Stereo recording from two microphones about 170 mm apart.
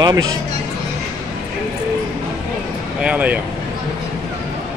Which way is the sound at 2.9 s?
10° right (ahead or behind).